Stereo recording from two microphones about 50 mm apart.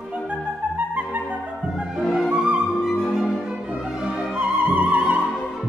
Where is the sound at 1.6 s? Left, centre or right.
Centre.